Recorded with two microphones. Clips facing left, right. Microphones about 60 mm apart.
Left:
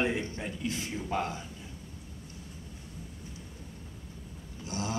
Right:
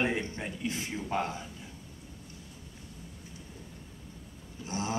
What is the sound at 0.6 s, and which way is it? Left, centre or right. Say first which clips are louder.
Mantra: even; right.